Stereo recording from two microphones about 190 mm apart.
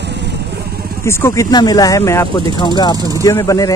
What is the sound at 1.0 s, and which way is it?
Speech, 15° left (ahead or behind).